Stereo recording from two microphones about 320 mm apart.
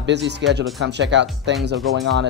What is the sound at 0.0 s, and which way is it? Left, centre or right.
Speech, right.